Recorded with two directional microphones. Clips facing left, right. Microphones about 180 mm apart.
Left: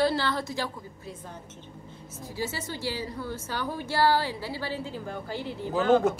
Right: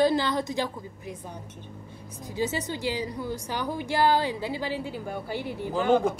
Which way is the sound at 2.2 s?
20° right (ahead or behind).